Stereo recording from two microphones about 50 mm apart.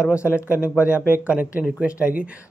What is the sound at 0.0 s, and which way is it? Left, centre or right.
A man's voice, right.